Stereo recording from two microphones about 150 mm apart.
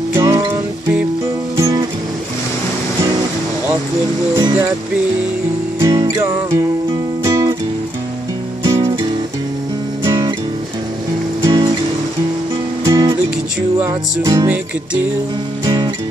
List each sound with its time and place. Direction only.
0.1 s music: 20° right (ahead or behind)
1.6 s music: 25° right (ahead or behind)
4.4 s music: 20° right (ahead or behind)
5.8 s music: 25° right (ahead or behind)
10.0 s music: 25° right (ahead or behind)
11.4 s music: 30° right (ahead or behind)
12.8 s music: 25° right (ahead or behind)
15.6 s music: 30° right (ahead or behind)